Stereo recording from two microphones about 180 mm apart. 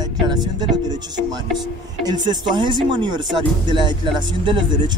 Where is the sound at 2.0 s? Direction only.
25° right (ahead or behind).